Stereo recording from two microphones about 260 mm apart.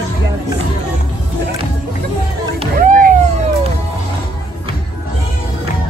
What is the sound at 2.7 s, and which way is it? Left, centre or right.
Vehicle, right.